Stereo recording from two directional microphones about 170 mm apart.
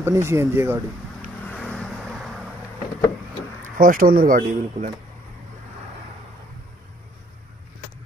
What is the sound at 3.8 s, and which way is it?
Speech, 55° right (ahead or behind).